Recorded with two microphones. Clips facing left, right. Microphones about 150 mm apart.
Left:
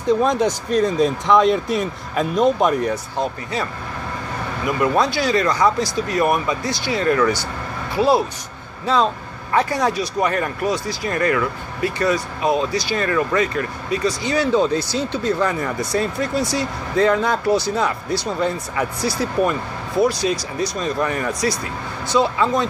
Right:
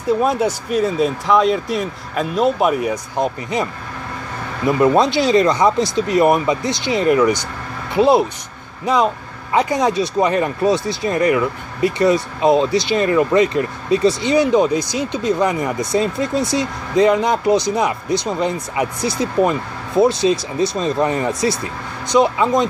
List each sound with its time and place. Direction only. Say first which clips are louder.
0.2 s speech: right 1 dB; 10° right (ahead or behind)
4.6 s speech: right 5 dB; 25° right (ahead or behind)